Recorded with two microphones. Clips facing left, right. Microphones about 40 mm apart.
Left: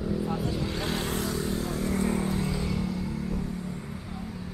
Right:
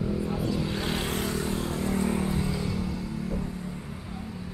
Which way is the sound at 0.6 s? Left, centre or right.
Centre.